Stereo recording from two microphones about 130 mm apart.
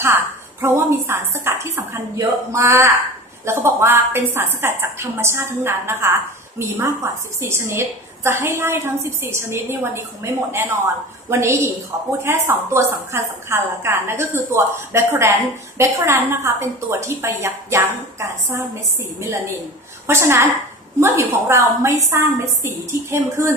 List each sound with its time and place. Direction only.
0.0 s a woman's voice: 20° right (ahead or behind)
20.1 s a woman's voice: 20° right (ahead or behind)